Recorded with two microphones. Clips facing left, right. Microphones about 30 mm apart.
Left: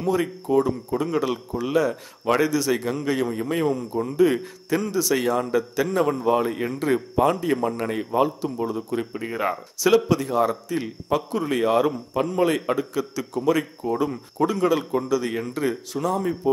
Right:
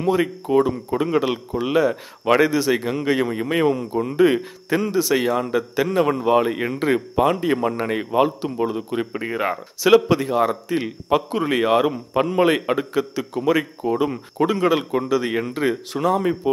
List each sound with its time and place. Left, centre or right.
0.0 s a man's voice: right